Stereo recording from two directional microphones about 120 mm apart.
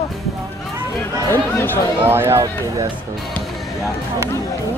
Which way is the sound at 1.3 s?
15° left (ahead or behind).